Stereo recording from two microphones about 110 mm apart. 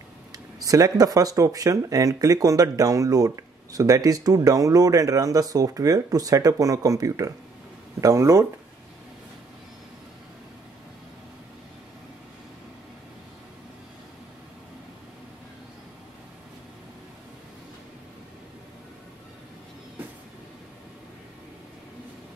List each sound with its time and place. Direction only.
0.3 s speech: 35° right (ahead or behind)